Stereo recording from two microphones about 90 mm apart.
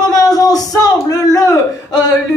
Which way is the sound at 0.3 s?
45° left (ahead or behind).